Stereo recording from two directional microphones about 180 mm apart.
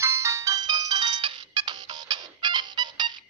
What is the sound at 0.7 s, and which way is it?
Ringtone, 25° right (ahead or behind).